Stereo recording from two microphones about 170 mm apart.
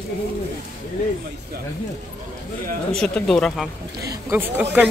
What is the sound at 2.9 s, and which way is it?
Speech, 5° left (ahead or behind).